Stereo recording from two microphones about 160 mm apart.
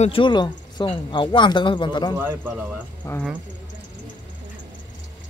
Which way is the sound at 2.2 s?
15° right (ahead or behind).